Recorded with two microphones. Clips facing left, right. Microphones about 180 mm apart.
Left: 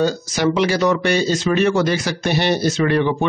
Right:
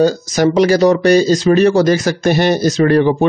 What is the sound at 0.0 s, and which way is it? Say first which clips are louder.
Speech: right 6 dB; 40° right (ahead or behind).